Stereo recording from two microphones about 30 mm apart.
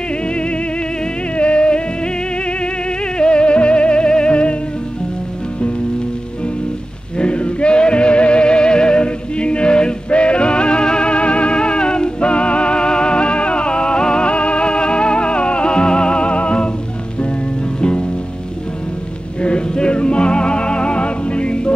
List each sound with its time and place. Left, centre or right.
0.3 s music: left
3.2 s music: left
7.2 s music: left
17.7 s music: left
19.4 s music: left